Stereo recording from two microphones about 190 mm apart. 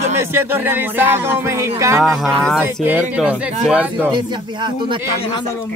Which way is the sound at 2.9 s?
10° right (ahead or behind).